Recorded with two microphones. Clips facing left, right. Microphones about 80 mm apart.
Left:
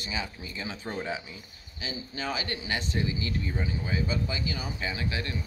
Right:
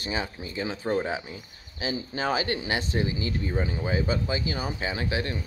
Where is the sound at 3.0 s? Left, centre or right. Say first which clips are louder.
Right 3 dB; right.